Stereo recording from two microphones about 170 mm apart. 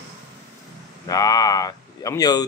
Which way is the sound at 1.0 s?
20° left (ahead or behind).